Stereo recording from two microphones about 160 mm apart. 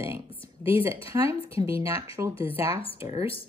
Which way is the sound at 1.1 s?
20° right (ahead or behind).